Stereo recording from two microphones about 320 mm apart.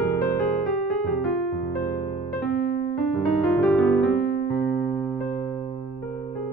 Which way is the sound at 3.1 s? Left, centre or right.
Centre.